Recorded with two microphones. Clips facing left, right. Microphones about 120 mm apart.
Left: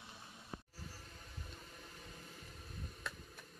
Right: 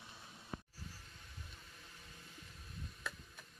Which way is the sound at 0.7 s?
30° left (ahead or behind).